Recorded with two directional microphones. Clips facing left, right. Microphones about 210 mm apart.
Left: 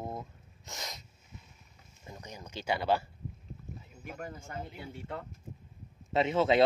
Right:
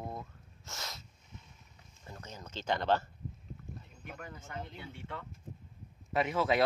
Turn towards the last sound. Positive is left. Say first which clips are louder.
# left 4 dB
turn(degrees=25)  # may be behind; listen again after turning